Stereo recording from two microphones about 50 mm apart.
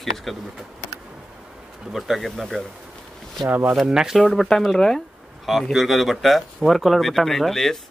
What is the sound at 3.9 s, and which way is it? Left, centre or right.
Speech, centre.